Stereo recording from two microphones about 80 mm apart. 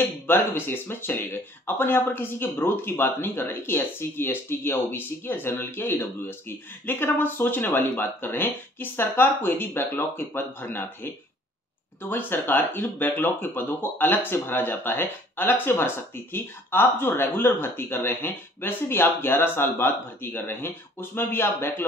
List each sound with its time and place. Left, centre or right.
0.0 s speech: left